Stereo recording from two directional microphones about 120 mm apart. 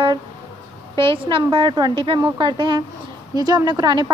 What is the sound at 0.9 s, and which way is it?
A woman's voice, 45° right (ahead or behind).